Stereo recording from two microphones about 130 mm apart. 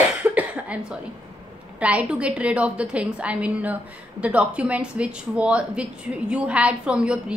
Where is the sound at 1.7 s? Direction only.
10° right (ahead or behind).